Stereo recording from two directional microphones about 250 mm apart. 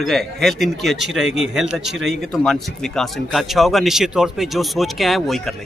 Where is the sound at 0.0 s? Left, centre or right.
Centre.